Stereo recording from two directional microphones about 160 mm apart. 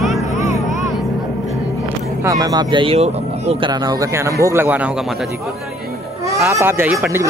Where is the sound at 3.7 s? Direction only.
25° right (ahead or behind).